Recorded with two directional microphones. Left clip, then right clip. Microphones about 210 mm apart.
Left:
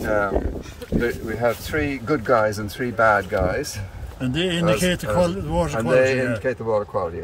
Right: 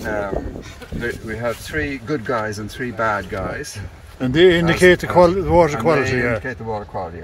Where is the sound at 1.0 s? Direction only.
20° left (ahead or behind).